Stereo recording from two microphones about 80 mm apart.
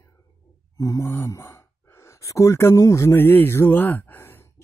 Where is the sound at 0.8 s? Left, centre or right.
Left.